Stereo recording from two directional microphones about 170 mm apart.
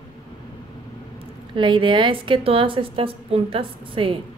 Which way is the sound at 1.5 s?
30° right (ahead or behind).